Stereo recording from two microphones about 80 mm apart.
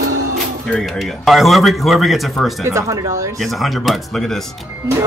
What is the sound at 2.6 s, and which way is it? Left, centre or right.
Speech, right.